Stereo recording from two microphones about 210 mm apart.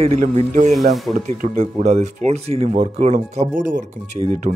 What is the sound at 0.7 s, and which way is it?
Speech, centre (ahead or behind).